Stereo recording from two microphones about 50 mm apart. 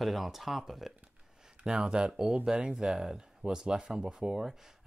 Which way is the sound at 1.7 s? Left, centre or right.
Centre.